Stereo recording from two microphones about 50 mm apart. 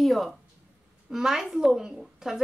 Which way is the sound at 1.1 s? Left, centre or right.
Centre.